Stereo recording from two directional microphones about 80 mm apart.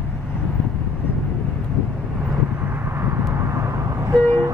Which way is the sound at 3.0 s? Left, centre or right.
Right.